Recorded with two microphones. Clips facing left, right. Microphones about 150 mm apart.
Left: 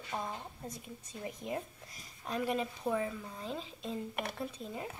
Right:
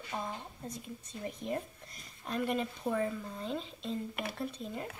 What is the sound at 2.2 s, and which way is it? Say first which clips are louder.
Speech: right 1 dB; 5° left (ahead or behind).